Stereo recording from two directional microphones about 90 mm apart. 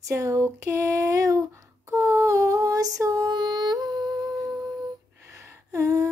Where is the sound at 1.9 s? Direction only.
30° right (ahead or behind); by 4.1 s 50° right (ahead or behind).